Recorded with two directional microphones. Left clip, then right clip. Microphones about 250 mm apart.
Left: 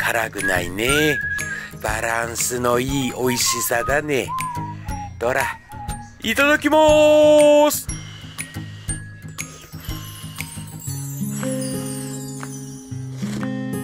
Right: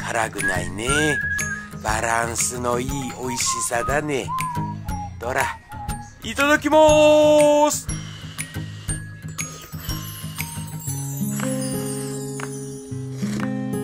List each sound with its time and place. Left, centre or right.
0.0 s speech: centre
1.6 s music: centre
2.4 s speech: centre
9.4 s music: centre
13.2 s music: centre